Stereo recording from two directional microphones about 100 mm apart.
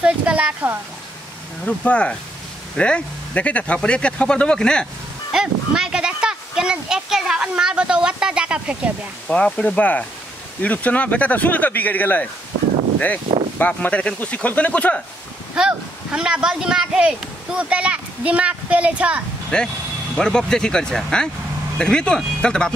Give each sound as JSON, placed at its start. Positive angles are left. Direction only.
{"t": 0.0, "sound": "speech", "side_deg": -10}
{"t": 1.7, "sound": "speech", "side_deg": 10}
{"t": 5.3, "sound": "speech", "side_deg": -5}
{"t": 9.3, "sound": "speech", "side_deg": 10}
{"t": 13.6, "sound": "speech", "side_deg": 15}
{"t": 15.5, "sound": "speech", "side_deg": -10}
{"t": 19.5, "sound": "speech", "side_deg": 10}